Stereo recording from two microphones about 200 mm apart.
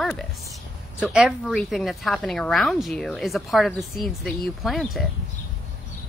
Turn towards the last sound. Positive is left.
turn(degrees=0)  # may be behind; listen again after turning